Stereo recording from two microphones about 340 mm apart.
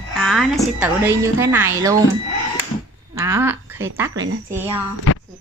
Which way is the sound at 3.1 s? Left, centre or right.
Centre.